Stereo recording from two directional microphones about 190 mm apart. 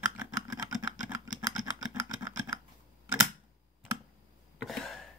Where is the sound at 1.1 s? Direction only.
20° right (ahead or behind).